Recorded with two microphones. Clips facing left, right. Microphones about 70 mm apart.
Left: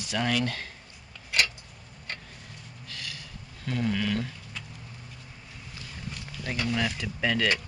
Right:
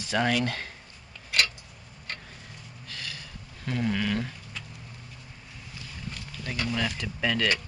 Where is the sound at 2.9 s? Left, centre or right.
Right.